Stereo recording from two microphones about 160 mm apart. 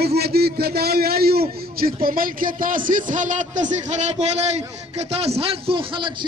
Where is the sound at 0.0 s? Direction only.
80° right.